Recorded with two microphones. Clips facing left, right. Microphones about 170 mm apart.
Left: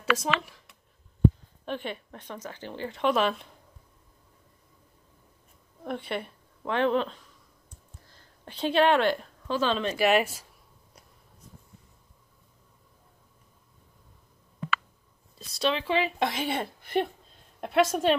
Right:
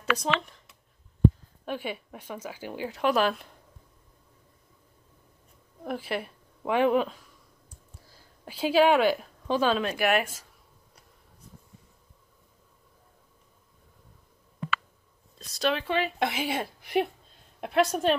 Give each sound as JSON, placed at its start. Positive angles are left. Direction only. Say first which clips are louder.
{"t": 0.0, "sound": "speech", "louder": "even", "side_deg": 5}
{"t": 1.7, "sound": "speech", "louder": "right 1 dB", "side_deg": -5}
{"t": 5.9, "sound": "a woman's voice", "louder": "right 1 dB", "side_deg": -5}
{"t": 9.9, "sound": "speech", "louder": "left 2 dB", "side_deg": -45}
{"t": 15.3, "sound": "a woman's voice", "louder": "even", "side_deg": 0}